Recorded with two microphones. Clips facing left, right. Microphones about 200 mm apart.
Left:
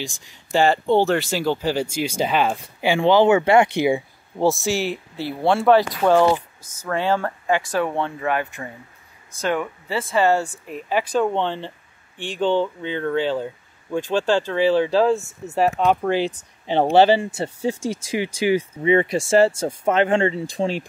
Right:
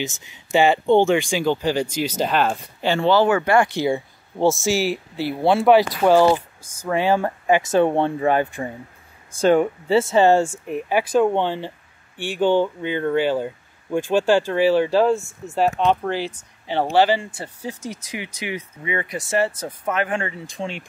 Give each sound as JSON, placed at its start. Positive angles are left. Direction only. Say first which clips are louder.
{"t": 0.0, "sound": "speech", "louder": "right 4 dB", "side_deg": -5}
{"t": 4.4, "sound": "speech", "louder": "right 1 dB", "side_deg": 0}